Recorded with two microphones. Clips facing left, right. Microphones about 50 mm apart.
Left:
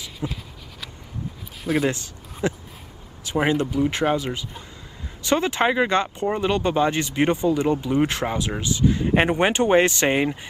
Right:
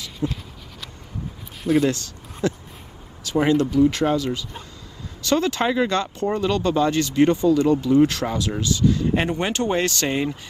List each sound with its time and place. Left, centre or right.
0.2 s speech: centre
1.6 s speech: centre
1.9 s speech: left